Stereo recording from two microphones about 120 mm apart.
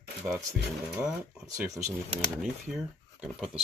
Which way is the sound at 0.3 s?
20° right (ahead or behind).